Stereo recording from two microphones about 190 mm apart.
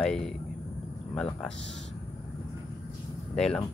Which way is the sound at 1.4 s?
5° left (ahead or behind).